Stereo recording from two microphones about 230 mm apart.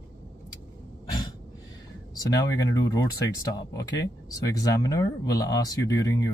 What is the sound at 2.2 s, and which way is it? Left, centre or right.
Speech, centre.